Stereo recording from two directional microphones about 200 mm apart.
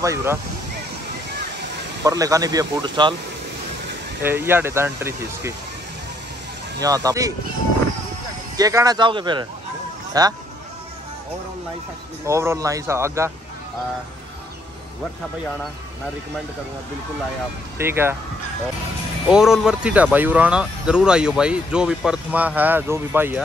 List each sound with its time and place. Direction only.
0.0 s speech: 15° right (ahead or behind)
2.0 s speech: 15° right (ahead or behind)
4.2 s speech: 10° right (ahead or behind)
6.8 s speech: 15° right (ahead or behind)
8.5 s speech: 20° right (ahead or behind)
12.3 s speech: 15° right (ahead or behind)
17.7 s speech: 10° right (ahead or behind)
19.2 s speech: 5° right (ahead or behind)